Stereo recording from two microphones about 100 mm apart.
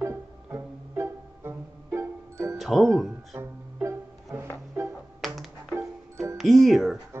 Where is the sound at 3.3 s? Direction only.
25° right (ahead or behind).